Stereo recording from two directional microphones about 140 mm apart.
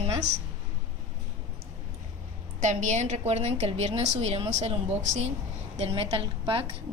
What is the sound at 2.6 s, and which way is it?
A woman's voice, 60° right (ahead or behind).